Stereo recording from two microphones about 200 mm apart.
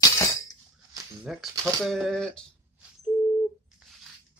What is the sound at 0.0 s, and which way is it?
Chink, 15° left (ahead or behind).